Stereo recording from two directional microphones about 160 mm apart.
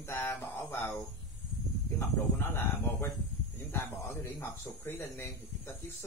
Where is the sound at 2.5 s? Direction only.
15° left (ahead or behind).